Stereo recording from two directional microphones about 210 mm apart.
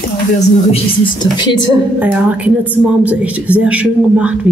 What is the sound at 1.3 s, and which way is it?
Speech, 20° left (ahead or behind).